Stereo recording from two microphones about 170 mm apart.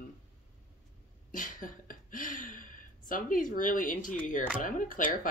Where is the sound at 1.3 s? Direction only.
50° left (ahead or behind).